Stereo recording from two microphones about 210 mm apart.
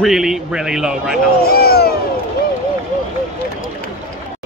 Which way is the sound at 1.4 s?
45° left (ahead or behind).